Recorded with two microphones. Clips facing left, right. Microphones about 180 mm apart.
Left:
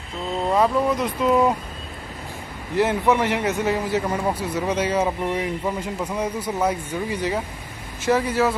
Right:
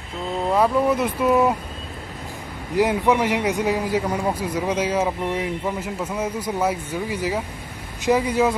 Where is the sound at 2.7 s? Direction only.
10° right (ahead or behind).